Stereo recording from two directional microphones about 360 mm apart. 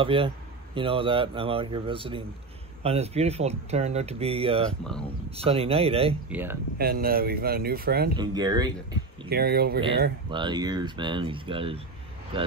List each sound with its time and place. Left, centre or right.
0.0 s speech: centre
6.2 s speech: centre
6.8 s speech: right
8.2 s speech: centre
9.3 s speech: right
10.3 s speech: centre